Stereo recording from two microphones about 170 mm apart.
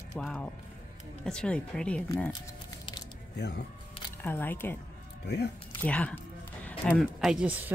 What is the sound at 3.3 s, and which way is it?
Speech, 75° left (ahead or behind).